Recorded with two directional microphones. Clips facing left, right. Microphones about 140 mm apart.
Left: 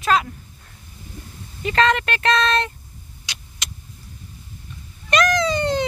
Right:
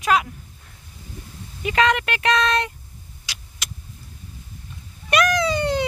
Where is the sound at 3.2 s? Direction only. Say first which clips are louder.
Left 1 dB; 5° right (ahead or behind).